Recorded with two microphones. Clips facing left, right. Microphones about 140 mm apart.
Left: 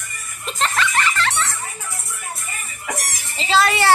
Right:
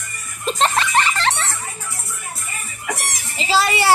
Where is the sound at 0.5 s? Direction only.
30° right (ahead or behind).